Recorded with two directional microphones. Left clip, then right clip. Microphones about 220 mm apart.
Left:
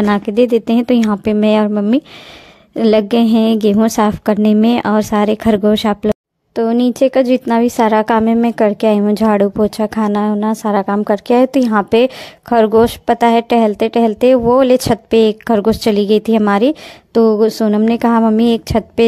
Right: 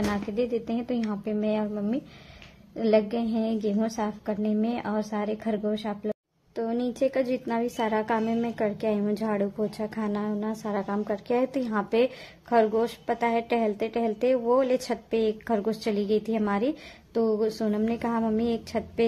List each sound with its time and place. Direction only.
0.1 s a woman's voice: 50° left (ahead or behind)